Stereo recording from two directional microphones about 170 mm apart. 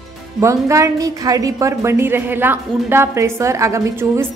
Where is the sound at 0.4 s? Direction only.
15° right (ahead or behind).